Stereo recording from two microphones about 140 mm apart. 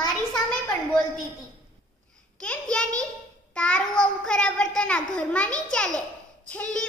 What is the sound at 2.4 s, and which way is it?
A child's voice, 5° left (ahead or behind).